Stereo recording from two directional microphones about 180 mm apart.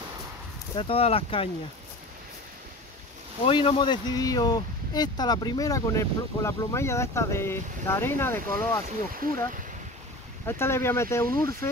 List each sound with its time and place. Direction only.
0.7 s speech: 30° left (ahead or behind)
3.4 s speech: 25° left (ahead or behind)
10.4 s speech: 15° left (ahead or behind)